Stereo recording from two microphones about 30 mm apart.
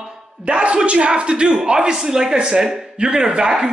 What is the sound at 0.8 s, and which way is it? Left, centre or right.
A man's voice, right.